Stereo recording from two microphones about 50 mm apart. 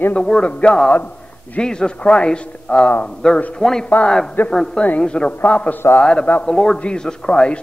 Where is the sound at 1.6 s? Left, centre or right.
Centre.